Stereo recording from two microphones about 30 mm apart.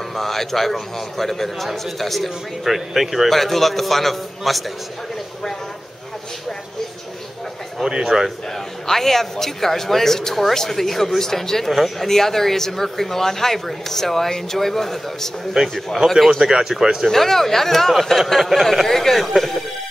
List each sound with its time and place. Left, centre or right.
0.1 s speech: centre
3.3 s speech: centre
8.0 s speech: centre
8.8 s speech: centre
11.7 s speech: centre
12.1 s speech: centre
15.6 s speech: centre
17.1 s speech: centre